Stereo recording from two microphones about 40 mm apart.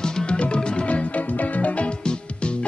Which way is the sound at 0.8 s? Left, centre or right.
Left.